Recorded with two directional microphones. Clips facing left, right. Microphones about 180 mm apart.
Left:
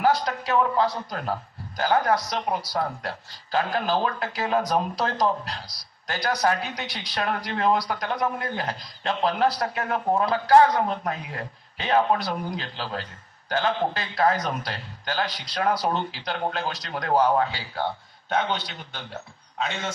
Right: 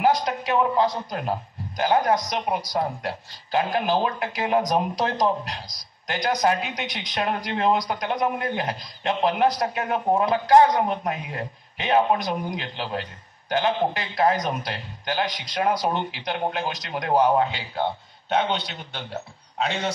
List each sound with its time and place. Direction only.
0.0 s a man's voice: 15° right (ahead or behind); by 19.9 s 35° right (ahead or behind)